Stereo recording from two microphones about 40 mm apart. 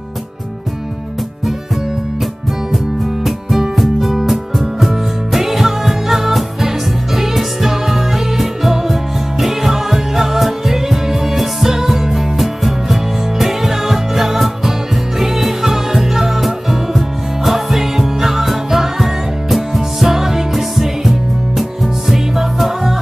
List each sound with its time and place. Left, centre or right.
3.3 s music: centre